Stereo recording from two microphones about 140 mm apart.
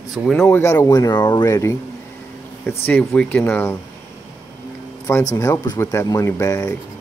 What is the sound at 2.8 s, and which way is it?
Speech, 15° left (ahead or behind).